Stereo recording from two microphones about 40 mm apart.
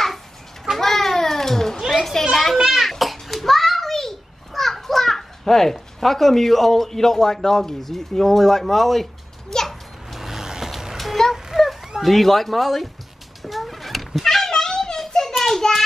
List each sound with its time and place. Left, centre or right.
0.7 s children playing: centre
2.5 s a sound: centre
2.8 s children playing: centre
7.4 s a child's voice: centre
10.1 s vehicle: centre
11.0 s a sound: centre
12.0 s speech: centre
13.4 s cat: centre
14.5 s a sound: centre